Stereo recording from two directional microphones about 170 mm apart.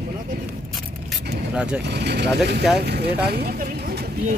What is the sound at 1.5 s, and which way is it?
Speech, 5° right (ahead or behind).